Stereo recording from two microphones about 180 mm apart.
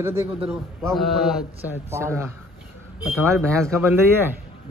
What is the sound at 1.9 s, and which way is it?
A man's voice, 15° right (ahead or behind).